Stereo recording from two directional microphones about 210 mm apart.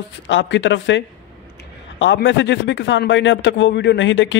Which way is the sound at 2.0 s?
60° left (ahead or behind).